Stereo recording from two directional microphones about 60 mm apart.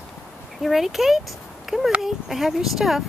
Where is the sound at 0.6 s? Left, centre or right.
Centre.